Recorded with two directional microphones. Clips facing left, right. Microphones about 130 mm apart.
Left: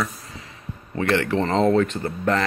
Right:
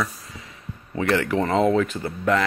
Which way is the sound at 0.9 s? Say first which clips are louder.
Even; 10° right (ahead or behind).